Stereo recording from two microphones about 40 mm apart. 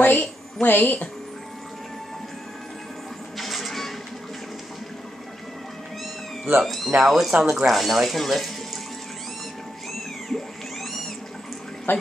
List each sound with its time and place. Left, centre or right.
0.0 s speech: left
3.3 s music: centre
6.6 s speech: centre
10.3 s a sound: centre
11.9 s speech: left